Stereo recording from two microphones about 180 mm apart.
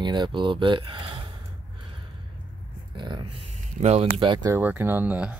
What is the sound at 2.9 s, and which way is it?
Speech, 25° right (ahead or behind).